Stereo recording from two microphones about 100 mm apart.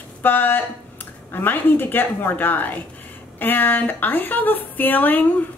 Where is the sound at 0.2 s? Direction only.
20° left (ahead or behind).